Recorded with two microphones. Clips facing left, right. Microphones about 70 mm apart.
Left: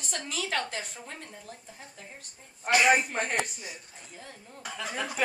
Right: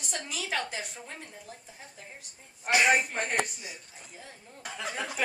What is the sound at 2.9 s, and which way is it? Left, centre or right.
Speech, centre.